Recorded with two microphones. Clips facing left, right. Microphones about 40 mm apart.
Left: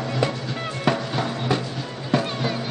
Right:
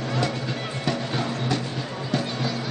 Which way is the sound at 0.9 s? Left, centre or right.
Centre.